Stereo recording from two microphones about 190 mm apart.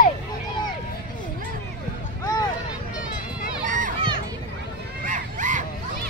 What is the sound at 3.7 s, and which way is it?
Crowd, 45° right (ahead or behind).